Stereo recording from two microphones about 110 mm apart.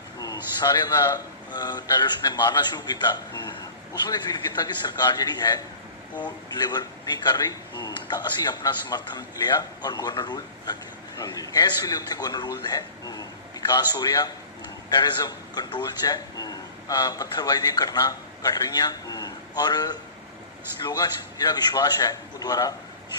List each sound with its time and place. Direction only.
0.2 s a man's voice: 40° left (ahead or behind)
4.1 s a man's voice: 40° left (ahead or behind)